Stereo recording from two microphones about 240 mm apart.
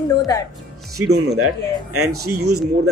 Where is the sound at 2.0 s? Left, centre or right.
Right.